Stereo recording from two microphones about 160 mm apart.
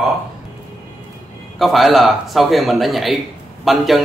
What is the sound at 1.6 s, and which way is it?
A man's voice, centre (ahead or behind).